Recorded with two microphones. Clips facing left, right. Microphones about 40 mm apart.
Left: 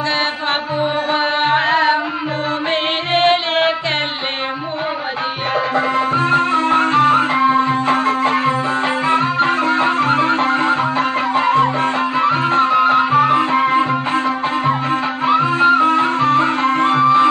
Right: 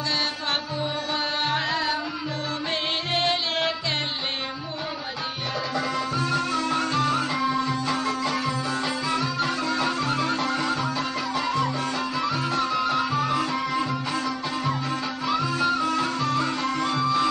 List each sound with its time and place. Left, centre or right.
1.1 s music: left
3.1 s music: left
5.8 s music: left